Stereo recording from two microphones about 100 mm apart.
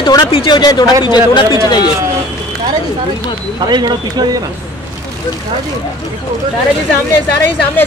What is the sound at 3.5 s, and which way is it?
Speech, 45° right (ahead or behind).